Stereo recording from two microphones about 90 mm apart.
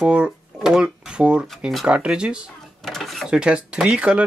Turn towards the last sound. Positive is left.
turn(degrees=-10)  # may be behind; listen again after turning